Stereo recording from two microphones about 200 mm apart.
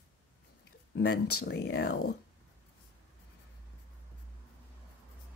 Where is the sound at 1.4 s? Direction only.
55° left (ahead or behind).